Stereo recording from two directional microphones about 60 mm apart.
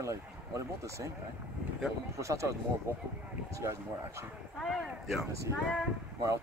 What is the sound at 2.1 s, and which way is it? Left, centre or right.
Speech, right.